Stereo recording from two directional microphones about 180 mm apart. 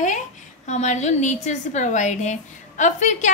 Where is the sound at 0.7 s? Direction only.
40° left (ahead or behind).